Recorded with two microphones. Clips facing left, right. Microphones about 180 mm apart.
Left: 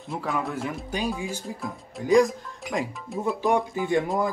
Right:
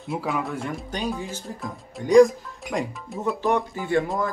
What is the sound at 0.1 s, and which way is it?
Speech, centre (ahead or behind).